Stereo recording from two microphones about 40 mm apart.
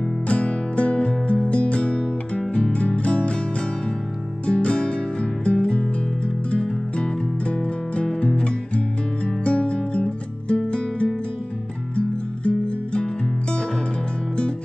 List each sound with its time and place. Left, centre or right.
0.3 s music: left
4.5 s music: left
12.4 s music: left